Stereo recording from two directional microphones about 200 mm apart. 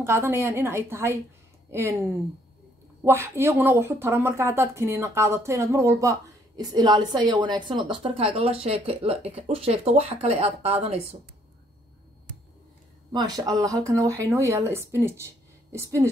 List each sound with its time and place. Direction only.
0.0 s speech: 15° right (ahead or behind)
3.1 s speech: 10° right (ahead or behind); by 11.1 s 30° right (ahead or behind)
13.1 s speech: 20° right (ahead or behind)